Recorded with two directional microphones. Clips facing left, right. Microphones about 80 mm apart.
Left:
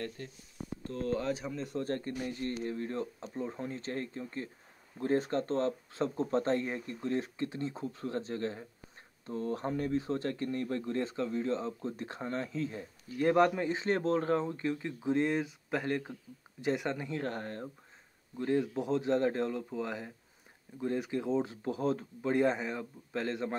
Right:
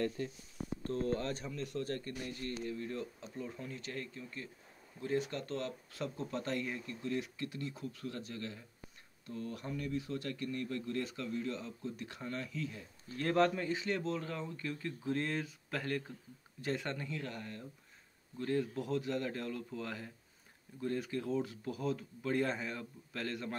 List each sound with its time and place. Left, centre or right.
0.9 s speech: right
1.2 s speech: centre
1.6 s speech: left
13.2 s speech: centre
17.1 s speech: left
18.4 s speech: left
22.3 s speech: left